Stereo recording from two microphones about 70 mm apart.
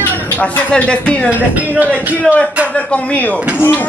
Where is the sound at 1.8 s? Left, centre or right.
Right.